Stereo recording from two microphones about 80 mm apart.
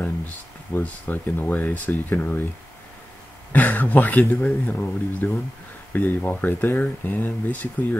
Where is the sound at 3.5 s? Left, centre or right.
Left.